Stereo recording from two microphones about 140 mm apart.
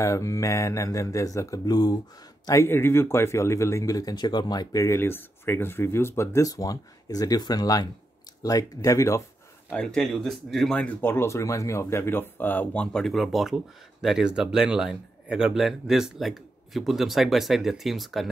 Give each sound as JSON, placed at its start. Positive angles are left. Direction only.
{"t": 0.0, "sound": "speech", "side_deg": 20}
{"t": 9.7, "sound": "speech", "side_deg": 5}